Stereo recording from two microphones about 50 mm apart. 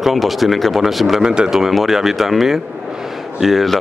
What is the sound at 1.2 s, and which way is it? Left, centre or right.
Speech, centre.